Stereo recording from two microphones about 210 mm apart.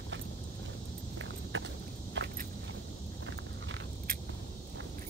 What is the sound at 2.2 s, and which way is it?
Walk, 60° right (ahead or behind).